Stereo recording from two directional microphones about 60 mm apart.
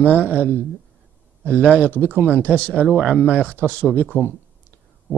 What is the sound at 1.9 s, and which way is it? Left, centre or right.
Speech, left.